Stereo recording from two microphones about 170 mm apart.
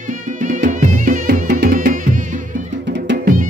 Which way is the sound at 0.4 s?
50° right (ahead or behind).